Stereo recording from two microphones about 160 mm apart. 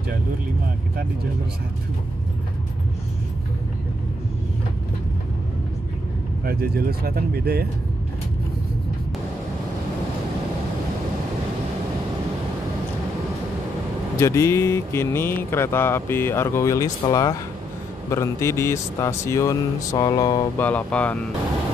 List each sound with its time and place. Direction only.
6.4 s speech: 70° right (ahead or behind)
14.1 s speech: 20° left (ahead or behind)
20.5 s speech: 10° left (ahead or behind)